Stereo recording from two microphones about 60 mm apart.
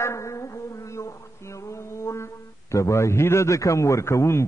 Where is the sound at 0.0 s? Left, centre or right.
Left.